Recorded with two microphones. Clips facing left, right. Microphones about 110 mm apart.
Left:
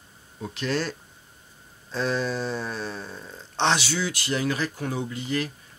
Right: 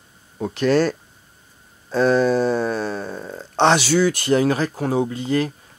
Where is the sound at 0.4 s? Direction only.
50° right (ahead or behind).